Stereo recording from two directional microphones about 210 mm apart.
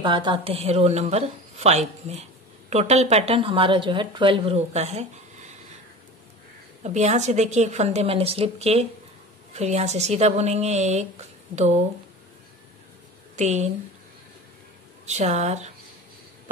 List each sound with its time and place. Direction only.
0.0 s a woman's voice: 20° right (ahead or behind)
6.8 s speech: 35° right (ahead or behind)
13.4 s speech: 35° right (ahead or behind)
15.0 s speech: 35° right (ahead or behind)